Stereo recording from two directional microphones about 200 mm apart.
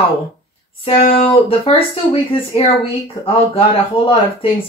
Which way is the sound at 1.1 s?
25° left (ahead or behind).